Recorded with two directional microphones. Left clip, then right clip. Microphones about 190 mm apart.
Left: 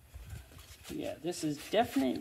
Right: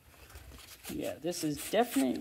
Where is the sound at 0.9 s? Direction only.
40° right (ahead or behind).